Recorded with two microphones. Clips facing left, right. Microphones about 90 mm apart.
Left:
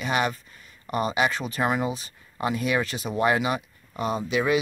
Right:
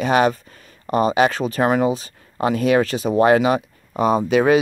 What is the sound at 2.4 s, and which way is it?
Speech, 90° right.